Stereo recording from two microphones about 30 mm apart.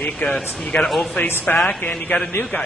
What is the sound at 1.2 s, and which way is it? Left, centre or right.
Speech, left.